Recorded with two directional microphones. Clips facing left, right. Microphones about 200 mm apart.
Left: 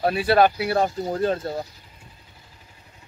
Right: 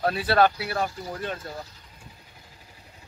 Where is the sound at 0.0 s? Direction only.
15° left (ahead or behind).